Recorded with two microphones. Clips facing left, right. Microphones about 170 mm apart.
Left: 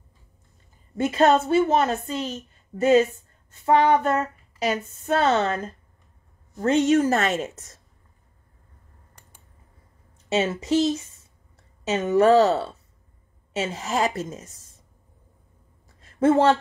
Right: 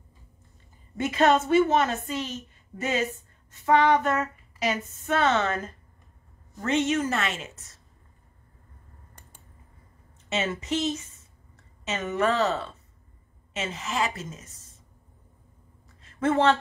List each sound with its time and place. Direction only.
0.9 s child singing: 35° left (ahead or behind)
10.3 s child singing: 35° left (ahead or behind)
16.0 s a sound: 35° left (ahead or behind)